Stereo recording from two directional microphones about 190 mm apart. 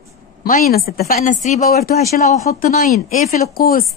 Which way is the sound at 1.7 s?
55° left (ahead or behind).